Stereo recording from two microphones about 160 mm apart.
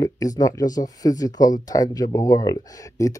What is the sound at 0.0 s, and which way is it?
Speech, 20° left (ahead or behind).